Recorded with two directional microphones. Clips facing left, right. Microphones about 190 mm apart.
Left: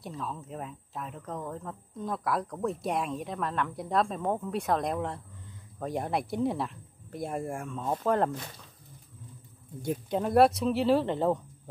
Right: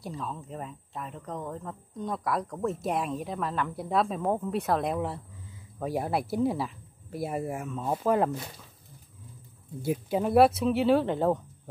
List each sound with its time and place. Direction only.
0.0 s speech: centre (ahead or behind)
9.8 s speech: 5° right (ahead or behind)